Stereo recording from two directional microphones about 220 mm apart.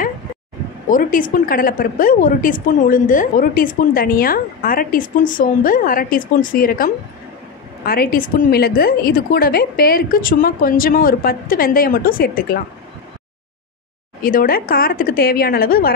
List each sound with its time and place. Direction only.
0.8 s a woman's voice: 35° left (ahead or behind)
14.2 s a woman's voice: 40° left (ahead or behind)